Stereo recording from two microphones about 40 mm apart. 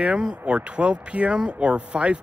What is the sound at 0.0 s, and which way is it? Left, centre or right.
Speech, right.